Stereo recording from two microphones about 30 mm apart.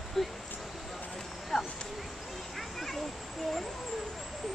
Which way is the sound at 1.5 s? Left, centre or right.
Centre.